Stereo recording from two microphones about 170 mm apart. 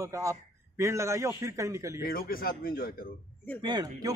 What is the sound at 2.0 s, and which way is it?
Speech, 60° left (ahead or behind).